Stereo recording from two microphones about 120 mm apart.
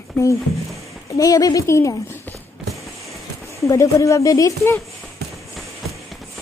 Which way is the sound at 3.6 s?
25° left (ahead or behind).